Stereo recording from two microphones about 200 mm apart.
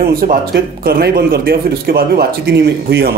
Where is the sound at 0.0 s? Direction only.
45° right (ahead or behind).